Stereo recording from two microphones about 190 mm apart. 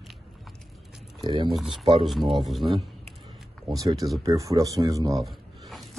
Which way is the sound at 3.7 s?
20° right (ahead or behind).